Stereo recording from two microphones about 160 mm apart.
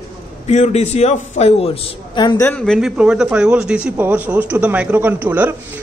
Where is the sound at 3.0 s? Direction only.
5° right (ahead or behind).